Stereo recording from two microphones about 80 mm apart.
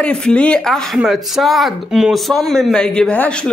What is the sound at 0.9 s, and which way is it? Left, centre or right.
Speech, centre.